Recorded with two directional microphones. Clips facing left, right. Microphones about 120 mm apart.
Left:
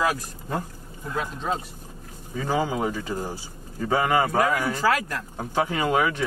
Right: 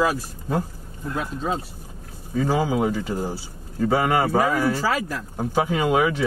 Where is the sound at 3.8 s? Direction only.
5° right (ahead or behind).